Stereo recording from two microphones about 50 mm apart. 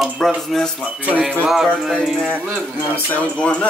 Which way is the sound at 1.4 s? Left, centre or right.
Centre.